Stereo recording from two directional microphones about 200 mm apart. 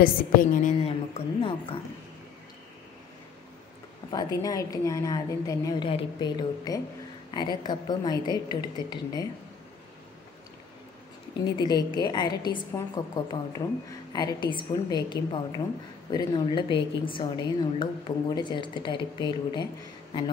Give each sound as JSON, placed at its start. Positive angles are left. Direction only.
{"t": 0.0, "sound": "a woman's voice", "side_deg": 40}
{"t": 4.1, "sound": "a woman's voice", "side_deg": 20}
{"t": 11.4, "sound": "a woman's voice", "side_deg": 20}